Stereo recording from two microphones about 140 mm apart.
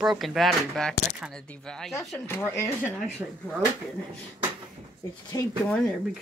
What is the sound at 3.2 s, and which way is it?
Speech, 10° right (ahead or behind).